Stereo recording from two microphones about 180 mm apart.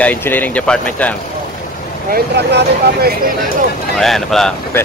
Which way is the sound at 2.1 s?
70° right (ahead or behind).